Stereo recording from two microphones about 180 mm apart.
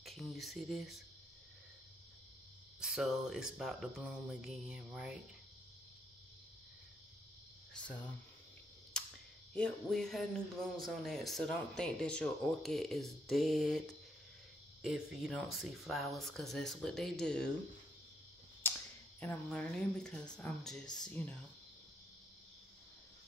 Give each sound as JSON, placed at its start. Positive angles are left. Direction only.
{"t": 0.0, "sound": "speech", "side_deg": 0}
{"t": 2.8, "sound": "speech", "side_deg": 0}
{"t": 9.0, "sound": "cap gun", "side_deg": 5}
{"t": 9.5, "sound": "speech", "side_deg": 5}
{"t": 18.6, "sound": "a sound", "side_deg": 10}
{"t": 19.1, "sound": "speech", "side_deg": 10}
{"t": 20.8, "sound": "speech", "side_deg": 20}
{"t": 21.1, "sound": "speech", "side_deg": 10}